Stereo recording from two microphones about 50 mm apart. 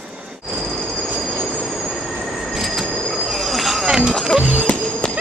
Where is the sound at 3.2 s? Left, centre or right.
Centre.